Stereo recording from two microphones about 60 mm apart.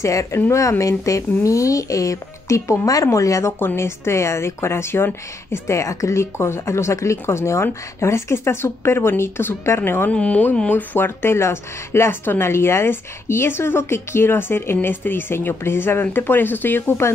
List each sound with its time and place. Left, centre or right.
0.0 s speech: left
3.5 s speech: left
5.7 s speech: left
10.1 s speech: left
10.7 s speech: left
11.1 s speech: left